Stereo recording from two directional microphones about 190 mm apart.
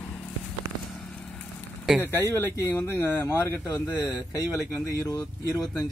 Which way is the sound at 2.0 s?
15° left (ahead or behind).